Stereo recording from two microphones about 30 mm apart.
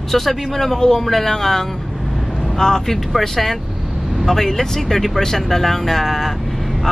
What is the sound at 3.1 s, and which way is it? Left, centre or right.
Speech, centre.